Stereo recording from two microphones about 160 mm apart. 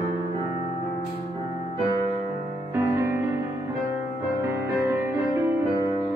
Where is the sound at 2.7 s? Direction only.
15° right (ahead or behind).